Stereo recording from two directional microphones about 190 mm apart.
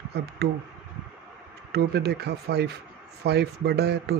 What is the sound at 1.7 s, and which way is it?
Speech, 60° right (ahead or behind).